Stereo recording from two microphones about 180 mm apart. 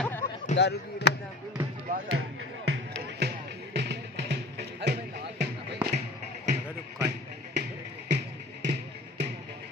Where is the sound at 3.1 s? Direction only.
70° right (ahead or behind).